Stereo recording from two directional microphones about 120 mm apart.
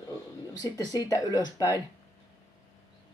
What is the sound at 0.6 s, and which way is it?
Speech, 30° left (ahead or behind).